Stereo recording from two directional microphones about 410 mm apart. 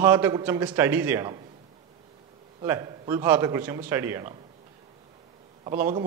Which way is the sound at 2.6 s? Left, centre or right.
Centre.